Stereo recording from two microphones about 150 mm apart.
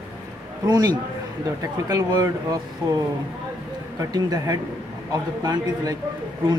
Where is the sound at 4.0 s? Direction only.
25° right (ahead or behind).